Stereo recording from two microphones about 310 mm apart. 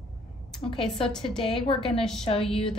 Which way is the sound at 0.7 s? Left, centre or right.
Centre.